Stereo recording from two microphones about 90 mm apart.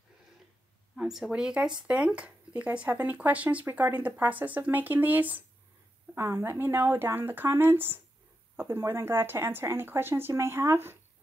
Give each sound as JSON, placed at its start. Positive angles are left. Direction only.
{"t": 0.9, "sound": "speech", "side_deg": -5}